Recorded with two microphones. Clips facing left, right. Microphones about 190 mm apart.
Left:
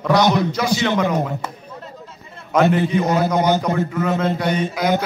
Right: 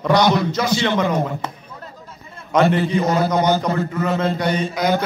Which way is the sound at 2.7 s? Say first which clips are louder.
Even; 10° left (ahead or behind).